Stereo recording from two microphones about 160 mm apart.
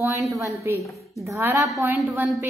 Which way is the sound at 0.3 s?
20° right (ahead or behind).